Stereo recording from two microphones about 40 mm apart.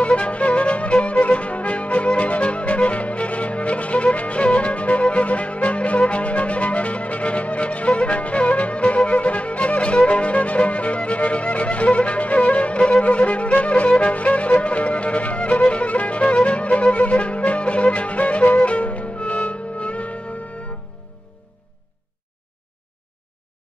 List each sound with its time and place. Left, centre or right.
0.0 s music: left